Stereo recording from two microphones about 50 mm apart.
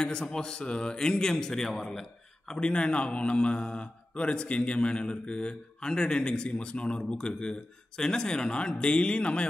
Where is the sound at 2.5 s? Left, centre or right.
Left.